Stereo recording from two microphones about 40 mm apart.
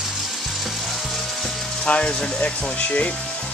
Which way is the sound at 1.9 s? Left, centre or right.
Left.